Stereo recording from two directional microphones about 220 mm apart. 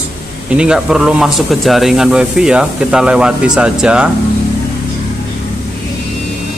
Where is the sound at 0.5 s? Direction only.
5° right (ahead or behind).